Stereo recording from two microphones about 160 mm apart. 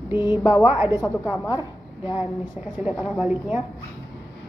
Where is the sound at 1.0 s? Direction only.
20° left (ahead or behind).